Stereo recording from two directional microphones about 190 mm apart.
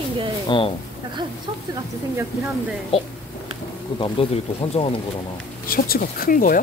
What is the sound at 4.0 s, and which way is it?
Speech, 30° left (ahead or behind).